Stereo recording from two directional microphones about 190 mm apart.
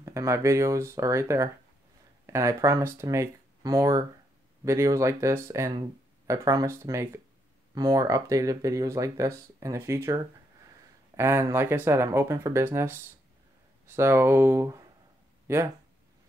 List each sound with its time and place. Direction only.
0.0 s speech: 15° right (ahead or behind)